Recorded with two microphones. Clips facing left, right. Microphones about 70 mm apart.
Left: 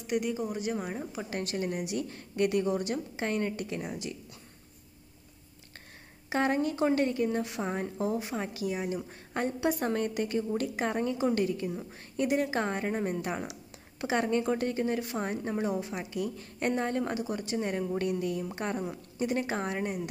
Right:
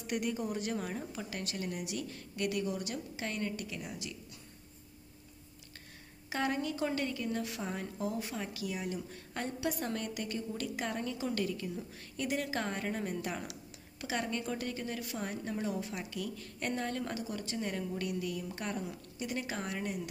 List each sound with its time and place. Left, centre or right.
0.0 s a woman's voice: centre
1.3 s a woman's voice: left
6.3 s a woman's voice: left